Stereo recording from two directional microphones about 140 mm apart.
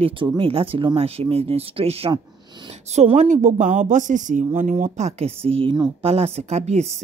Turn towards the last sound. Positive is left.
turn(degrees=-50)  # may be behind; listen again after turning